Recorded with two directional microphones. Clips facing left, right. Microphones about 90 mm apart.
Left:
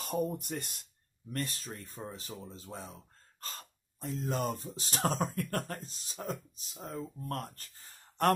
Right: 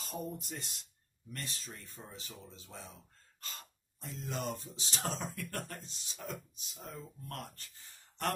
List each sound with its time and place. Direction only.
0.0 s speech: 60° left (ahead or behind)